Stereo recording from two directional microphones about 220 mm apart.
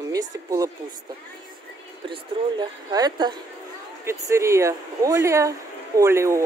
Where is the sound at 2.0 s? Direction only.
20° right (ahead or behind).